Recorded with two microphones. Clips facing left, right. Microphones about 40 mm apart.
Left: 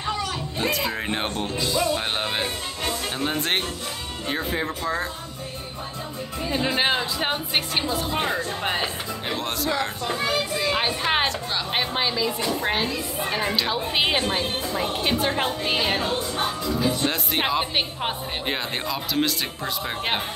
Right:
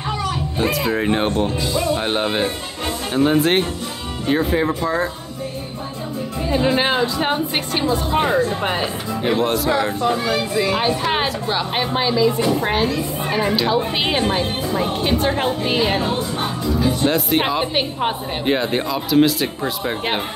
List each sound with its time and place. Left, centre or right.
0.6 s speech: centre
6.5 s speech: centre
8.1 s speech: centre
8.6 s speech: centre
10.3 s speech: right
10.8 s speech: centre
12.4 s speech: centre
12.6 s speech: centre